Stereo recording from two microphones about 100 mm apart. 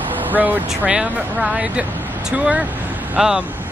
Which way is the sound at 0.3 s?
20° right (ahead or behind).